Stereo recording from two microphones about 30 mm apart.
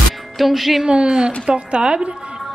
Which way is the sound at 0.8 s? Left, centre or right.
Right.